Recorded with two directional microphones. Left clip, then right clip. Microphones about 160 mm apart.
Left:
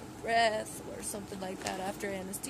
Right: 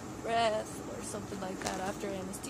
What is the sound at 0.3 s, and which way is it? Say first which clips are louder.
Speech: left 2 dB; 25° left (ahead or behind).